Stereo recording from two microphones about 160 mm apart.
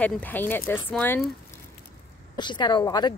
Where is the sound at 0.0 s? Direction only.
10° left (ahead or behind).